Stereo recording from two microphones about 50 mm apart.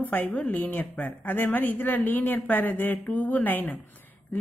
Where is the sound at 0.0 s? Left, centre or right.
Left.